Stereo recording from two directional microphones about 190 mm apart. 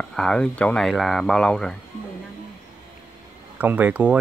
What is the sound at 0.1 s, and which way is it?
Speech, 5° left (ahead or behind).